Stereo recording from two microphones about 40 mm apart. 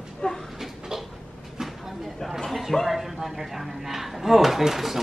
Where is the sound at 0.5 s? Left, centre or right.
Centre.